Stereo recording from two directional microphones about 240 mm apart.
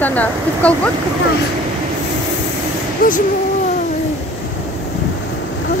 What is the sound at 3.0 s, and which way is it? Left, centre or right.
Speech, left.